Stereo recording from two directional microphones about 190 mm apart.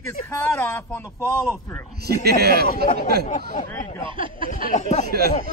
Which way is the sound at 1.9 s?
55° right (ahead or behind).